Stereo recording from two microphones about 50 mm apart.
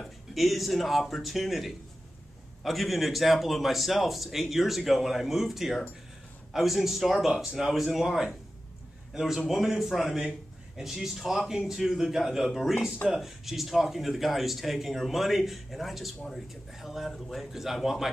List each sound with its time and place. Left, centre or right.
0.0 s a man's voice: centre